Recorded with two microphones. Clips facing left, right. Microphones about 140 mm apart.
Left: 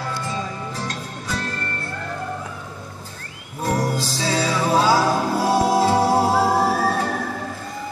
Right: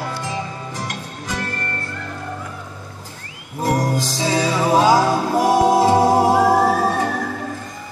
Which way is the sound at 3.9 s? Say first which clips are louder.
Right 3 dB; 15° right (ahead or behind).